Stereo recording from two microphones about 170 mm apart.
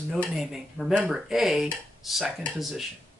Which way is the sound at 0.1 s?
Centre (ahead or behind).